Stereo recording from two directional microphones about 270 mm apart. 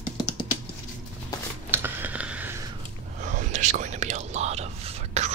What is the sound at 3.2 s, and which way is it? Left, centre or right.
Whispering, right.